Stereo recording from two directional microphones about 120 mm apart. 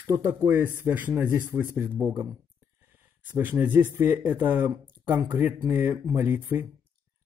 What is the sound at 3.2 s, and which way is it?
Speech, 15° right (ahead or behind).